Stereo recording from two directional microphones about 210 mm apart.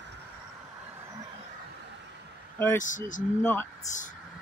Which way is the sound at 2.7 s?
35° left (ahead or behind).